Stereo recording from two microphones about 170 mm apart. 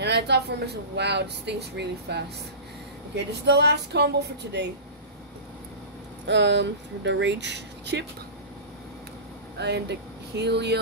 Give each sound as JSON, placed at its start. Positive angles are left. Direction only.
{"t": 0.0, "sound": "a woman's voice", "side_deg": -80}
{"t": 6.2, "sound": "speech", "side_deg": -90}
{"t": 9.6, "sound": "speech", "side_deg": -80}